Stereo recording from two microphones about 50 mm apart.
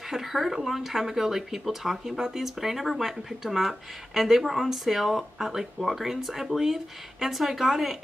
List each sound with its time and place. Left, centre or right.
0.0 s speech: centre